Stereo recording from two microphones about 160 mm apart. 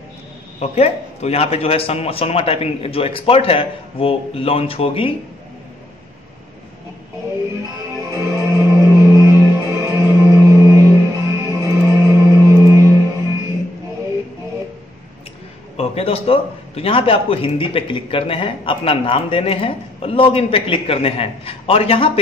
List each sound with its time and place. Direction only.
0.6 s a man's voice: 40° left (ahead or behind)
8.0 s music: 20° right (ahead or behind)
15.7 s a man's voice: 40° left (ahead or behind)